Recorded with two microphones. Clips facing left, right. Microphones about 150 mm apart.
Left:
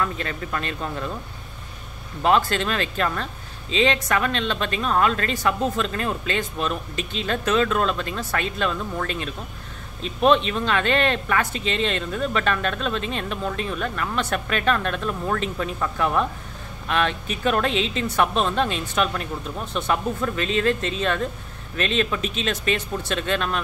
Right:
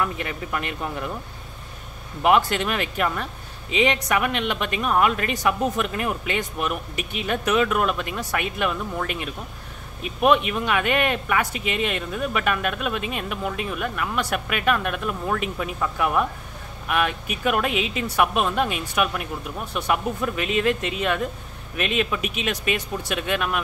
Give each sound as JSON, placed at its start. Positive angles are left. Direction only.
{"t": 0.0, "sound": "speech", "side_deg": -15}
{"t": 2.2, "sound": "speech", "side_deg": -15}